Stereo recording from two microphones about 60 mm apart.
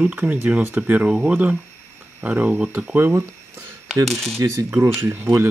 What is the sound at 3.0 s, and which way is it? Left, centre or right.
Speech, right.